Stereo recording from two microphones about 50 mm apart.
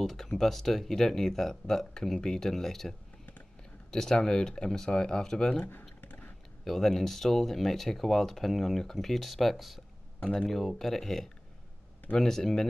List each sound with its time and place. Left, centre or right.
0.0 s speech: centre
5.9 s a sound: left
6.6 s speech: centre